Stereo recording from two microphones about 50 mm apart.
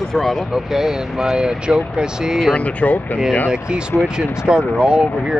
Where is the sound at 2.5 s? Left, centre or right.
Left.